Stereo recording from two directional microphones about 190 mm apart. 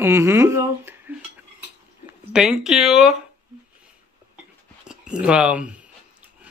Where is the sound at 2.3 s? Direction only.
Centre (ahead or behind).